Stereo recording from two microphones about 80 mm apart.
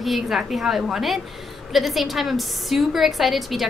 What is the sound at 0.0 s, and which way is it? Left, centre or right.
A woman's voice, centre.